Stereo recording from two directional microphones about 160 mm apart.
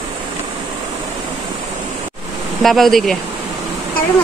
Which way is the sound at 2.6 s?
Centre (ahead or behind).